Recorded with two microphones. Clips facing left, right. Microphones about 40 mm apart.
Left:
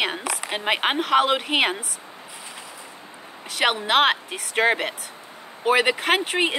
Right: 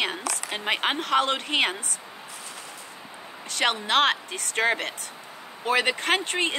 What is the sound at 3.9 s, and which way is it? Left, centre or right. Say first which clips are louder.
A woman's voice: left 3 dB; centre.